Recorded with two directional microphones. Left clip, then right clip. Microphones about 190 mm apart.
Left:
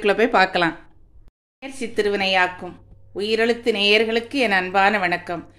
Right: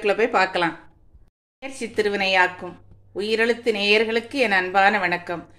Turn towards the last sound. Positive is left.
turn(degrees=15)  # may be behind; listen again after turning